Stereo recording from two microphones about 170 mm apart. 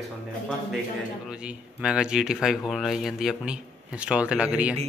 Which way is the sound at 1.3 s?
5° right (ahead or behind).